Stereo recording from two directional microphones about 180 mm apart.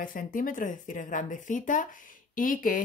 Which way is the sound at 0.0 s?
50° left (ahead or behind).